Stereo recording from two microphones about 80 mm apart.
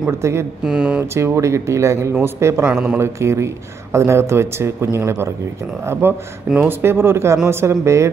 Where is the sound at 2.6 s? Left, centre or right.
Centre.